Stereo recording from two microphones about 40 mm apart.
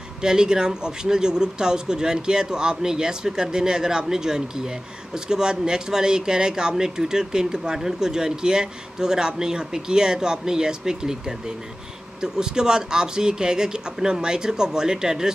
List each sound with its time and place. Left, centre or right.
0.2 s a man's voice: centre